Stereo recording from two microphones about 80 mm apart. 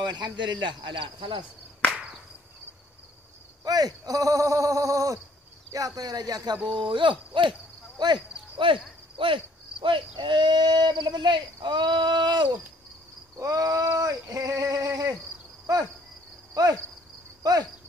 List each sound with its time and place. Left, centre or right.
0.0 s speech: right
3.6 s speech: right
6.7 s speech: right
8.0 s speech: right
8.5 s speech: right
13.4 s speech: right
16.6 s speech: right